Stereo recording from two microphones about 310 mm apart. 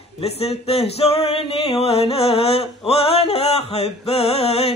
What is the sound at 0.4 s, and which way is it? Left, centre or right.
Music, centre.